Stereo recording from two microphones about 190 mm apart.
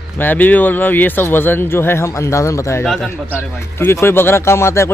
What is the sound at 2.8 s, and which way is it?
Speech, 5° left (ahead or behind).